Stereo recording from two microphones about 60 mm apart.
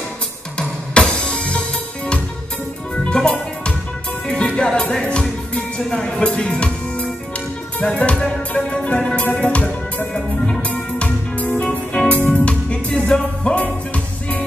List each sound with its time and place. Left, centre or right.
0.6 s music: centre
3.0 s music: centre
10.1 s music: centre
10.7 s music: left